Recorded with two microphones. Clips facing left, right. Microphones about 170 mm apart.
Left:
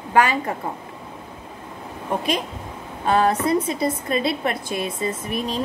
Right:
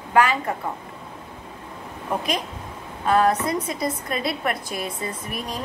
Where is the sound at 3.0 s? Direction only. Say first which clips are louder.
Left 1 dB; 30° left (ahead or behind).